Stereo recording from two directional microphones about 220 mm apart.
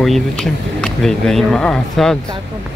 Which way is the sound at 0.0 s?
Centre (ahead or behind).